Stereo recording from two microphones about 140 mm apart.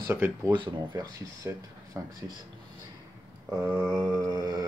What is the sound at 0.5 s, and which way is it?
Speech, 35° right (ahead or behind).